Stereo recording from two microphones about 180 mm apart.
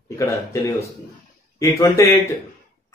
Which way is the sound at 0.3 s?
15° left (ahead or behind).